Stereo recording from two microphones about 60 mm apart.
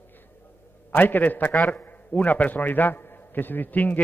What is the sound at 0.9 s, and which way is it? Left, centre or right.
A man's voice, left.